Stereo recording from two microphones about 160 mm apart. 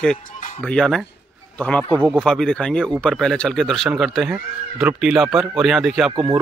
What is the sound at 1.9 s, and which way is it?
Speech, 10° right (ahead or behind).